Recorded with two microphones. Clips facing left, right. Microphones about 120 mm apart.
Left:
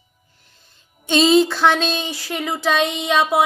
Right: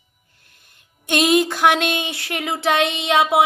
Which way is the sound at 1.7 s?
60° right (ahead or behind).